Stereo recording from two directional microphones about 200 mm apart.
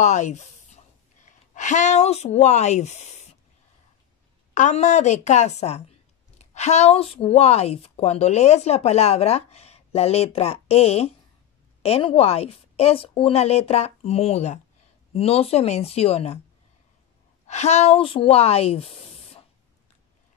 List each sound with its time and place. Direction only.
0.0 s a woman's voice: 35° left (ahead or behind)
4.6 s a woman's voice: 35° left (ahead or behind)
17.5 s speech: 35° left (ahead or behind)